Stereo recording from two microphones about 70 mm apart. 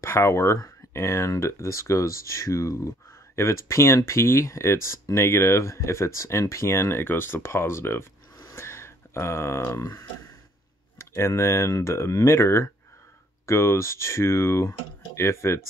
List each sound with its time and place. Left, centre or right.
0.0 s speech: left
8.5 s a sound: left
11.0 s speech: left